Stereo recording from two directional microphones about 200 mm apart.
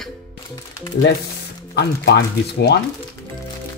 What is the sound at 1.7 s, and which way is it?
Speech, 55° left (ahead or behind).